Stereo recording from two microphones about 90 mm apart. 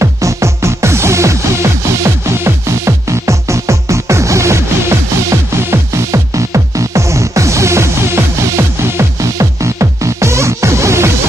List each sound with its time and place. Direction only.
0.0 s music: 35° right (ahead or behind)